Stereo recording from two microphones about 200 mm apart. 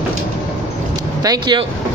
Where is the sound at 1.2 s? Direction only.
20° right (ahead or behind).